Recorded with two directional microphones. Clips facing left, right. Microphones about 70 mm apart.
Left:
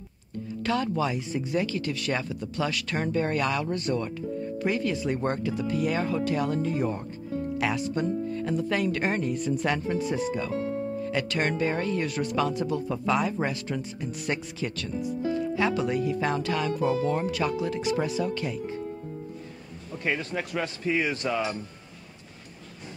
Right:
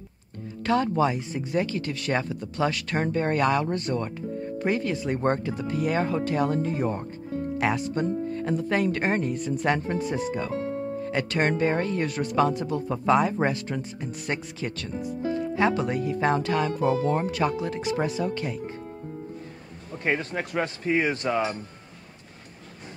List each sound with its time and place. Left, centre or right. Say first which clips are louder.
0.7 s speech: right 4 dB; right
19.9 s speech: right 2 dB; right